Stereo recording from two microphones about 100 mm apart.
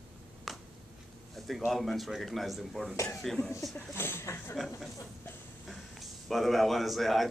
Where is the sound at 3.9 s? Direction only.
20° left (ahead or behind).